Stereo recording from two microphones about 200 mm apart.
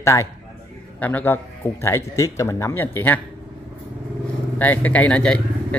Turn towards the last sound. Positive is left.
turn(degrees=5)  # may be behind; listen again after turning